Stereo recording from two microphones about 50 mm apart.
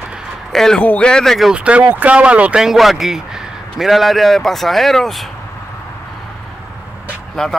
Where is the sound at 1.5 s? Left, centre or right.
Right.